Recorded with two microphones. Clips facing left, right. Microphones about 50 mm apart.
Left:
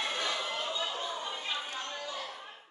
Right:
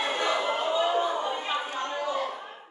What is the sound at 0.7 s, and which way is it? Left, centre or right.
Chatter, centre.